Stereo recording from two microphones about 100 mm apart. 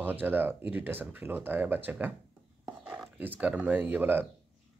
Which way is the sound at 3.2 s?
20° right (ahead or behind).